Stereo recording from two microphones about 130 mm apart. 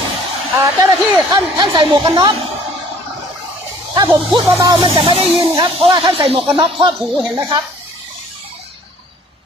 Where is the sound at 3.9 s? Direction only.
35° right (ahead or behind).